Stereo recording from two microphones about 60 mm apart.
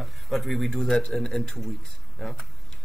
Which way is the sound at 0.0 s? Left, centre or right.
Centre.